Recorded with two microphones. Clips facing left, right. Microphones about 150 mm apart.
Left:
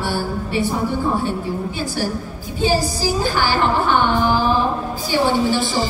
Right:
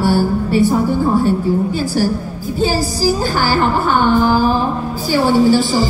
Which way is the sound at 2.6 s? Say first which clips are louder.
Right 2 dB; 40° right (ahead or behind).